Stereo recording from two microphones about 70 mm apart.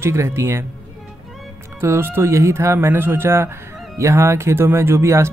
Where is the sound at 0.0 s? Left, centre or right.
Right.